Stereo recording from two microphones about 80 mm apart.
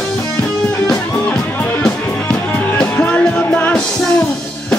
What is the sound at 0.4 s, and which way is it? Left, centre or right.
Music, centre.